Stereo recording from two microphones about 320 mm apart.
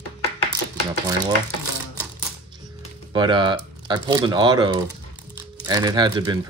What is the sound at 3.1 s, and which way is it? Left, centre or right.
Speech, centre.